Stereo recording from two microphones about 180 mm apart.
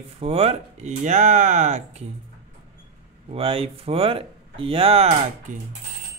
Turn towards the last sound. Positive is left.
turn(degrees=-35)  # may be behind; listen again after turning